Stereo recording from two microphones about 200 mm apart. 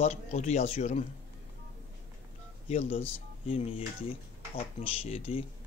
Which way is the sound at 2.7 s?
30° left (ahead or behind).